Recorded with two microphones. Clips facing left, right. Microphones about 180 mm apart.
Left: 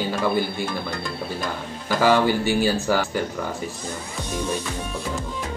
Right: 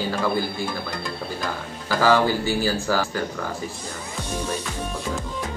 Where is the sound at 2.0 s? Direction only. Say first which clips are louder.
Left 1 dB; 20° left (ahead or behind).